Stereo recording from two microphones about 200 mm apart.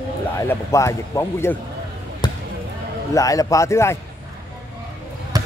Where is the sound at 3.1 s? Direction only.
15° left (ahead or behind).